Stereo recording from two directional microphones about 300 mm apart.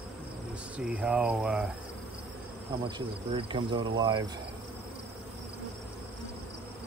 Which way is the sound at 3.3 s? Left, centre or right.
Centre.